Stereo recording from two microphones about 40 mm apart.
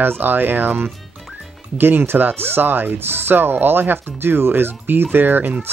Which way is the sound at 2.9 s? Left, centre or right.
Right.